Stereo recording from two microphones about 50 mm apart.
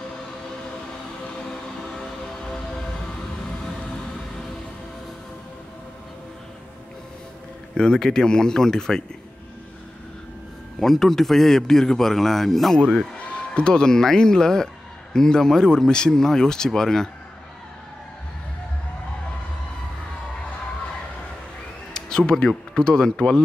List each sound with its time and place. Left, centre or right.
2.0 s music: centre
7.7 s speech: centre
10.8 s speech: centre
13.2 s speech: left
21.9 s a sound: centre
22.8 s speech: centre